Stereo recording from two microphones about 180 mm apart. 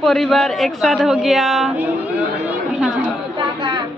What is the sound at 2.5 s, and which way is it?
Chatter, 5° right (ahead or behind).